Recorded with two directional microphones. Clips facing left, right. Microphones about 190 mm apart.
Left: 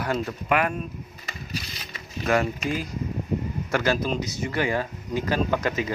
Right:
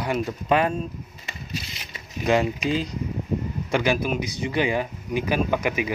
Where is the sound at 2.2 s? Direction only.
15° right (ahead or behind).